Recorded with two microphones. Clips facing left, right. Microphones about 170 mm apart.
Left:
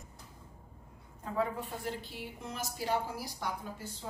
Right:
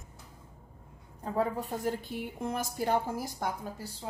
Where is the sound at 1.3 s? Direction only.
40° right (ahead or behind).